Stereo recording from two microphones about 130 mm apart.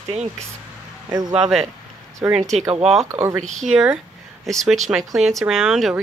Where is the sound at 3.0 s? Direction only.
20° right (ahead or behind).